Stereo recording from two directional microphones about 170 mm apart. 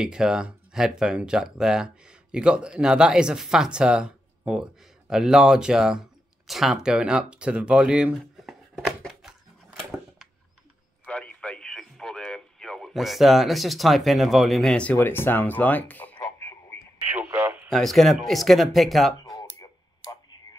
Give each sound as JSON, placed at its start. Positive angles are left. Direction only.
{"t": 0.0, "sound": "speech", "side_deg": -5}
{"t": 9.8, "sound": "a sound", "side_deg": 0}
{"t": 11.1, "sound": "radio", "side_deg": 5}
{"t": 17.0, "sound": "radio", "side_deg": -10}
{"t": 17.6, "sound": "speech", "side_deg": 0}
{"t": 19.2, "sound": "a sound", "side_deg": 20}